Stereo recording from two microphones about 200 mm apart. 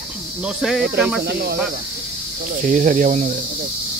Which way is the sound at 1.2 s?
55° right (ahead or behind).